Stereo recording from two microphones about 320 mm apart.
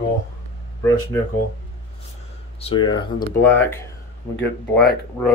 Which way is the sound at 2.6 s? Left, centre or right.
Centre.